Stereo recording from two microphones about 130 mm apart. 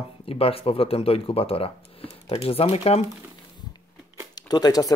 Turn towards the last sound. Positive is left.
turn(degrees=30)  # may be behind; listen again after turning